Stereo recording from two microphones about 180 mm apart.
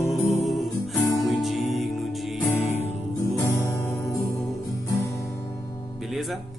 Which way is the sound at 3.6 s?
15° left (ahead or behind).